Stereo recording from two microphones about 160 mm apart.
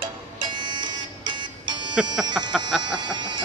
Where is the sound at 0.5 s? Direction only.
30° right (ahead or behind).